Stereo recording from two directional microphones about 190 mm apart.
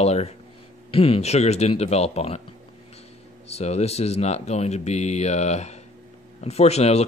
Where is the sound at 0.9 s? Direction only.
30° left (ahead or behind).